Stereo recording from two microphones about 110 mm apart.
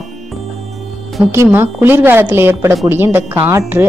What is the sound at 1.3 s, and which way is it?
A woman's voice, 25° right (ahead or behind).